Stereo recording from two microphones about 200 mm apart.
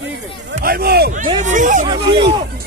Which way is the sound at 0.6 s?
50° right (ahead or behind).